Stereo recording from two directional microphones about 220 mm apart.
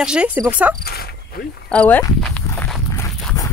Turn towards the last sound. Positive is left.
turn(degrees=15)  # may be behind; listen again after turning